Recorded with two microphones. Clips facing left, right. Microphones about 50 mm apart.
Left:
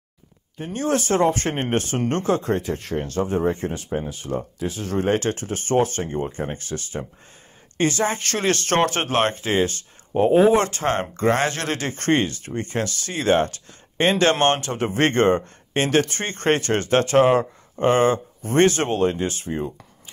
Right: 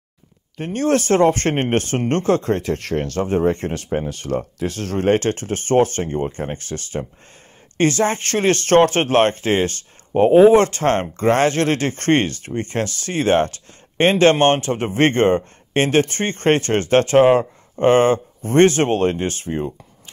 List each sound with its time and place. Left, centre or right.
0.6 s speech: right
3.2 s speech: right
3.5 s speech: right
4.1 s speech: right
4.9 s speech: right